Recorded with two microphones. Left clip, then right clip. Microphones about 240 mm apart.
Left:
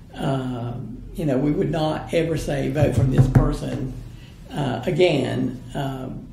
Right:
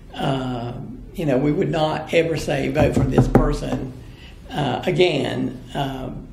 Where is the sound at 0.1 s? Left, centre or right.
Left.